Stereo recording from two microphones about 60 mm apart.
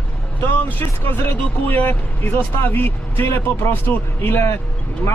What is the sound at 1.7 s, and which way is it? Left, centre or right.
Speech, left.